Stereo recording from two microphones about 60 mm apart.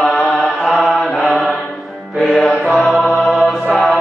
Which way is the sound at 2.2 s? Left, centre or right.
Centre.